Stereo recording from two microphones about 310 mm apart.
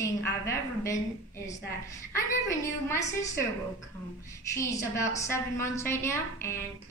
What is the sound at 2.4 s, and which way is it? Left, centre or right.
A woman's voice, centre.